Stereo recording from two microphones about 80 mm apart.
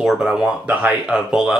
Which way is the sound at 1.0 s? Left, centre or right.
Centre.